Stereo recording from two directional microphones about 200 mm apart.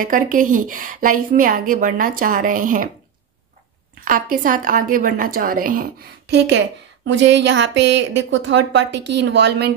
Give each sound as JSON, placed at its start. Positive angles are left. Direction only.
{"t": 0.0, "sound": "a woman's voice", "side_deg": -40}
{"t": 4.0, "sound": "a woman's voice", "side_deg": -45}